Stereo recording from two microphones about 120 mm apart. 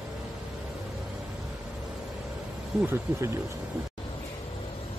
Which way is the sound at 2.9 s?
25° right (ahead or behind).